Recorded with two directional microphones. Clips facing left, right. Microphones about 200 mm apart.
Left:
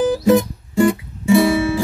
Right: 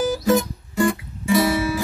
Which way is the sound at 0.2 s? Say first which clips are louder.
Left 5 dB; 25° left (ahead or behind).